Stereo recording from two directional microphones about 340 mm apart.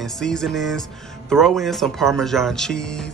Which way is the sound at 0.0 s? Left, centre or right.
Centre.